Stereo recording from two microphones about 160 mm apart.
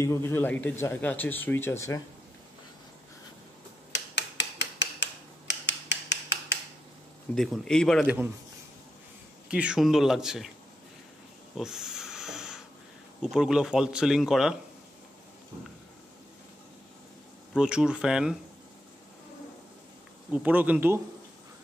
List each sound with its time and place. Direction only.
0.0 s speech: 15° left (ahead or behind)
3.9 s a sound: 90° left
7.3 s speech: 5° left (ahead or behind)
9.5 s speech: 5° right (ahead or behind)
11.5 s wheeze: 5° right (ahead or behind)
13.2 s speech: 5° right (ahead or behind)
17.6 s speech: 5° right (ahead or behind)
20.3 s speech: 10° right (ahead or behind)